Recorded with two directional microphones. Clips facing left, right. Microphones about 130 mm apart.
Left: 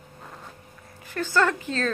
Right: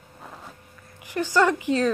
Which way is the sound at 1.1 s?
15° right (ahead or behind).